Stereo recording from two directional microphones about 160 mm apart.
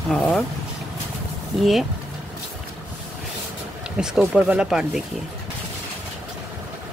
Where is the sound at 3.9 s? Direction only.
5° right (ahead or behind).